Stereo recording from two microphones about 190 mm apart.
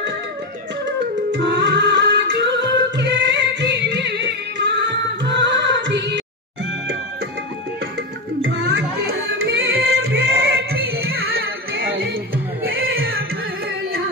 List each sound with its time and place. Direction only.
1.3 s music: 70° right (ahead or behind)
8.5 s music: 60° right (ahead or behind)